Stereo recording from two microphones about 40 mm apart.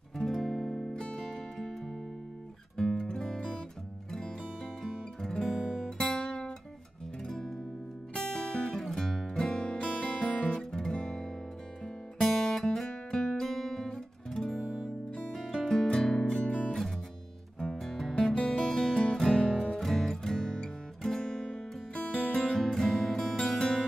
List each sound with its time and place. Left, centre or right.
0.2 s music: centre
2.8 s music: centre
5.3 s guitar: centre
7.2 s music: centre
9.5 s music: left
10.4 s music: centre
11.8 s music: centre
13.4 s guitar: centre
15.3 s music: centre
16.3 s music: left
17.6 s music: centre
18.3 s music: left
19.8 s music: centre